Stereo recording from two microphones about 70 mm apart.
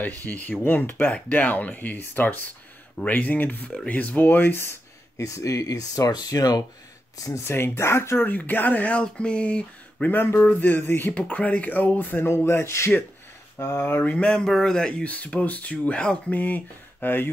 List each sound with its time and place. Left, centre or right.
0.0 s speech: left
5.2 s speech: left
7.4 s speech: left
8.2 s speech: left
10.5 s speech: left
13.6 s speech: left
14.0 s speech: centre
16.3 s a sound: left